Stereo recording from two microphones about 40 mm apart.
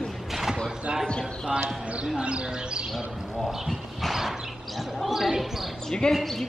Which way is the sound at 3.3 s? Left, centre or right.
Centre.